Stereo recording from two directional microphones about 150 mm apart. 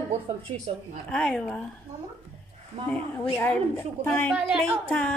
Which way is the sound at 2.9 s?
10° left (ahead or behind).